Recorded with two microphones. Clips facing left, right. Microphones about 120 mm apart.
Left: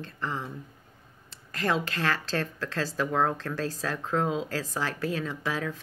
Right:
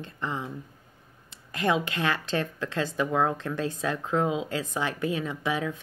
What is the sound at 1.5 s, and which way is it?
A woman's voice, 15° right (ahead or behind).